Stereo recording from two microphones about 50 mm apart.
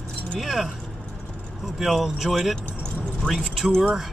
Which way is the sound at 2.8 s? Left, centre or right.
Centre.